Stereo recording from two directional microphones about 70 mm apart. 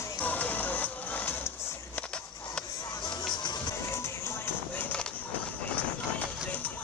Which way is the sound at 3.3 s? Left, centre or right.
Left.